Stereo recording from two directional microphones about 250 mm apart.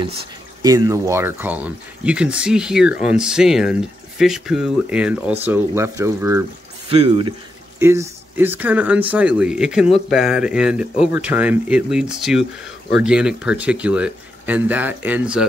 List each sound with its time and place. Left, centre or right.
0.0 s speech: centre